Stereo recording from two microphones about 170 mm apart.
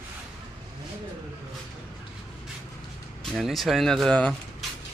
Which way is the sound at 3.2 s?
Centre (ahead or behind).